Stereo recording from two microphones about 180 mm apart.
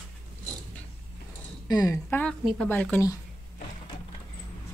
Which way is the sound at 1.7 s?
20° left (ahead or behind).